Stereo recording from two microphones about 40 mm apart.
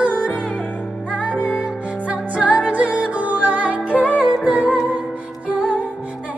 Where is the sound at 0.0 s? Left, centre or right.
Right.